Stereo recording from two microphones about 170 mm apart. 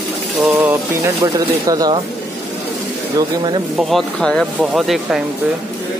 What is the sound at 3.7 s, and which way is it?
Speech, centre (ahead or behind).